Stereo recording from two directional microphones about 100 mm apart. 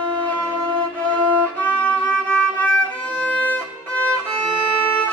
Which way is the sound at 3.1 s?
15° left (ahead or behind).